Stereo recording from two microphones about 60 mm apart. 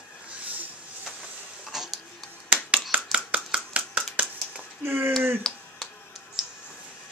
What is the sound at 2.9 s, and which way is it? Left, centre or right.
Chopping, right.